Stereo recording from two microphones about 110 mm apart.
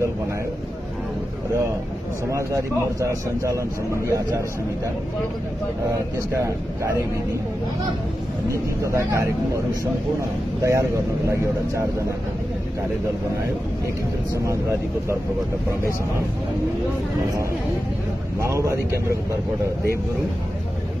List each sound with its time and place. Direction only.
2.3 s a man's voice: 30° right (ahead or behind)
6.3 s a man's voice: 25° right (ahead or behind)
8.5 s a man's voice: 25° right (ahead or behind)
10.6 s a man's voice: 25° right (ahead or behind)
14.4 s a man's voice: 25° right (ahead or behind)
18.4 s a man's voice: 25° right (ahead or behind)